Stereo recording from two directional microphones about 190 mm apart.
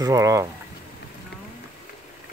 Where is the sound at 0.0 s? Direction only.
15° right (ahead or behind).